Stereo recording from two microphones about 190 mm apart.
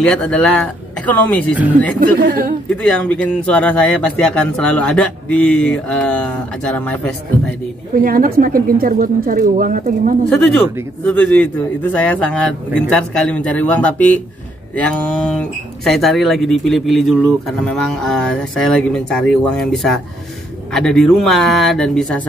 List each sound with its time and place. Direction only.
0.0 s speech: 5° left (ahead or behind)
1.5 s speech: 10° right (ahead or behind)
2.8 s speech: 5° left (ahead or behind)
7.9 s speech: 50° right (ahead or behind)
10.3 s speech: 5° left (ahead or behind)